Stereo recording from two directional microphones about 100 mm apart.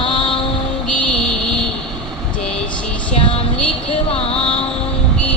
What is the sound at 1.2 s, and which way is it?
Vehicle, 5° left (ahead or behind).